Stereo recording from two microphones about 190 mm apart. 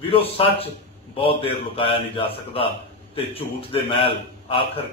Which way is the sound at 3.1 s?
30° left (ahead or behind).